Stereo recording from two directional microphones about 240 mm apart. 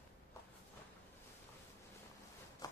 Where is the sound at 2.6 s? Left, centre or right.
Centre.